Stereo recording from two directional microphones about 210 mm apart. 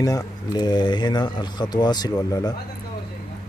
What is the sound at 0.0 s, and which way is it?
Speech, 20° left (ahead or behind).